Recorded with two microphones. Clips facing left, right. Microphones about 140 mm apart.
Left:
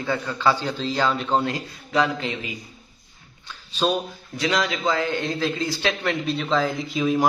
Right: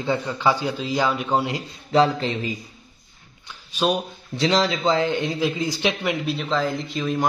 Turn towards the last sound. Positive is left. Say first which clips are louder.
# left 3 dB
turn(degrees=0)  # may be behind; listen again after turning